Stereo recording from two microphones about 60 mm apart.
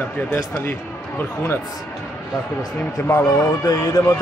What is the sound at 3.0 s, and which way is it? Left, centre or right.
Speech, left.